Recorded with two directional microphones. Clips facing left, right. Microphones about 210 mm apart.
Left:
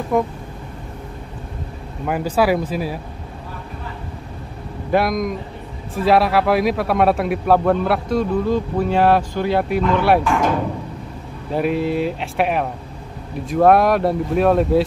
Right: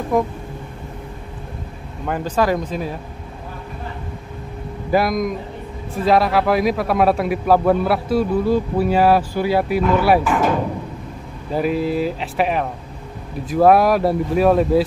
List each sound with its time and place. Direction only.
0.1 s a man's voice: centre (ahead or behind)
2.0 s speech: 10° left (ahead or behind)
4.9 s a man's voice: centre (ahead or behind)
11.5 s a man's voice: centre (ahead or behind)